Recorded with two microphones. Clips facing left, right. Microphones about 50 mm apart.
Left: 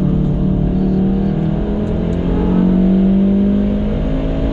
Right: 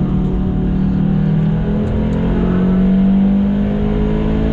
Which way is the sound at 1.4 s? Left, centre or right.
Centre.